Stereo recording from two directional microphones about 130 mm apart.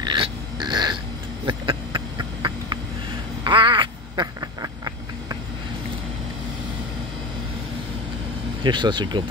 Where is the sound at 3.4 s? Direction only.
40° right (ahead or behind).